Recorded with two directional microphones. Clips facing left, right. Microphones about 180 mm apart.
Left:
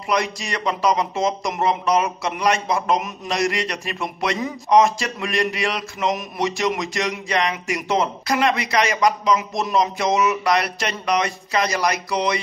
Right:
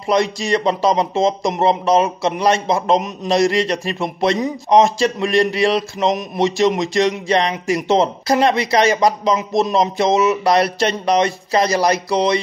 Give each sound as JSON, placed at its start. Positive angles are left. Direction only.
{"t": 0.0, "sound": "speech", "side_deg": -30}